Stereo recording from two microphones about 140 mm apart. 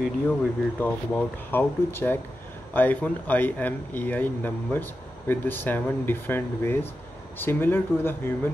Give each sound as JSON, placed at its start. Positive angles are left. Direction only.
{"t": 0.3, "sound": "speech", "side_deg": 10}